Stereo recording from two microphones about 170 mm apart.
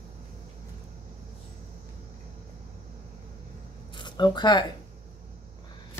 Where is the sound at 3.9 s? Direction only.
25° left (ahead or behind).